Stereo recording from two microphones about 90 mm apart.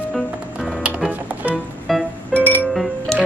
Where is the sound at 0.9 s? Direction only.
15° right (ahead or behind).